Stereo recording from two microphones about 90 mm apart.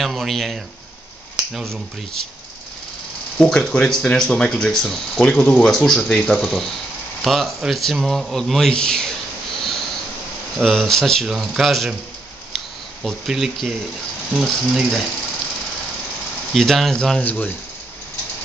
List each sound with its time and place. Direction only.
0.0 s a man's voice: centre (ahead or behind)
3.3 s a man's voice: 10° left (ahead or behind)
9.6 s a sound: centre (ahead or behind)
10.6 s a man's voice: 5° left (ahead or behind)
13.0 s a man's voice: centre (ahead or behind)
16.5 s a man's voice: centre (ahead or behind)
17.2 s speech: 20° left (ahead or behind)